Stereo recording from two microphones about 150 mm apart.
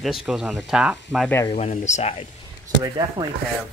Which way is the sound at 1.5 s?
45° left (ahead or behind).